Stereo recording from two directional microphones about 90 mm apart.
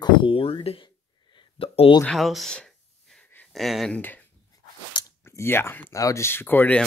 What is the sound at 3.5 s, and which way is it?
Speech, centre (ahead or behind).